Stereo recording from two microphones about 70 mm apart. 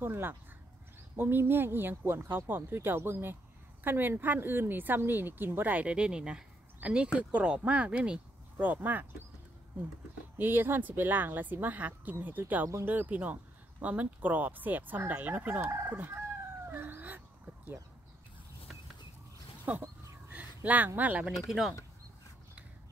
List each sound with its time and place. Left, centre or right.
0.0 s speech: right
10.3 s speech: right
15.7 s chicken: right
19.7 s speech: right
21.4 s speech: centre